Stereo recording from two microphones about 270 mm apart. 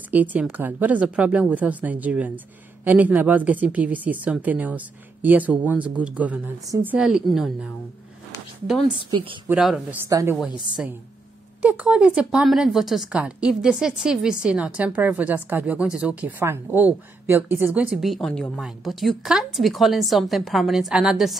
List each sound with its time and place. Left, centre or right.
0.1 s speech: centre
8.8 s speech: centre
9.5 s speech: centre